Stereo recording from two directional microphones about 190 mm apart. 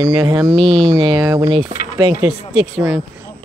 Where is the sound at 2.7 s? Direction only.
5° right (ahead or behind).